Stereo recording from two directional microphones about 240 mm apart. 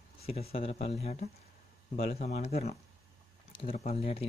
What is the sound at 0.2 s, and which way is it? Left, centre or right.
Speech, left.